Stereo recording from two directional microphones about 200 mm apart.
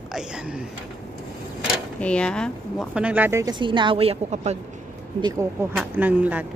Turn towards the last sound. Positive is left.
turn(degrees=-10)  # may be behind; listen again after turning